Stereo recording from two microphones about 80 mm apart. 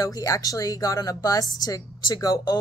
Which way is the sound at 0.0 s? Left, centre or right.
Left.